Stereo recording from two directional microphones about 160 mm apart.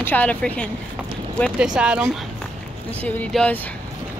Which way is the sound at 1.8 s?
5° right (ahead or behind).